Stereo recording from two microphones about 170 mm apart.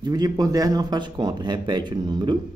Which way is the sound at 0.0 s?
25° right (ahead or behind).